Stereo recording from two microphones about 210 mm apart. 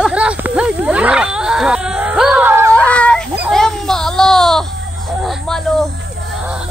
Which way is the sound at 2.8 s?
5° left (ahead or behind).